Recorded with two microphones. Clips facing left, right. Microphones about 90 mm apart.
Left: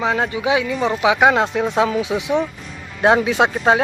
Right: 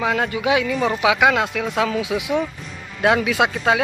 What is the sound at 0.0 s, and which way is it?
Speech, 20° left (ahead or behind).